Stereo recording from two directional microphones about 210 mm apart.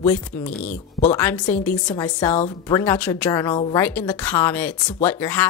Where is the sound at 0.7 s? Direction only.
35° left (ahead or behind).